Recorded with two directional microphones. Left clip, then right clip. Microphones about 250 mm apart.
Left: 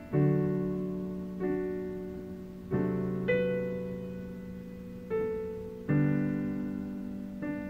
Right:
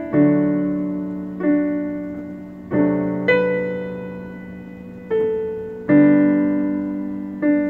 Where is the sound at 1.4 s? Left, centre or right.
Right.